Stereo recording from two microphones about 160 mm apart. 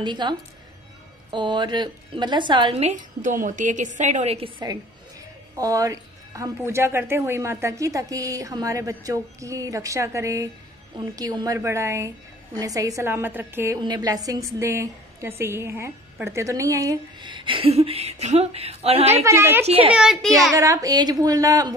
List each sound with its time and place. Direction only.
0.0 s a woman's voice: 30° right (ahead or behind)
2.8 s a woman's voice: 50° right (ahead or behind)
5.6 s a woman's voice: 20° right (ahead or behind)
13.7 s a woman's voice: 25° right (ahead or behind)
19.2 s a woman's voice: 15° right (ahead or behind)
19.6 s a child's voice: 40° right (ahead or behind)
19.9 s a child's voice: 5° right (ahead or behind)
20.5 s a woman's voice: 20° right (ahead or behind)